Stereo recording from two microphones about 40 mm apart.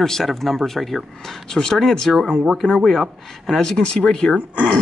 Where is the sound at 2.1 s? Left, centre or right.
Centre.